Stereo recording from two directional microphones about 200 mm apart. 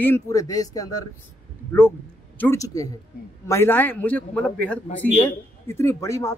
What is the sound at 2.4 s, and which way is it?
Speech, 15° left (ahead or behind).